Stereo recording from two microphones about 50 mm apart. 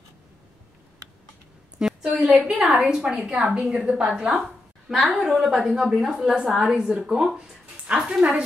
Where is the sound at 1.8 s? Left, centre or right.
Centre.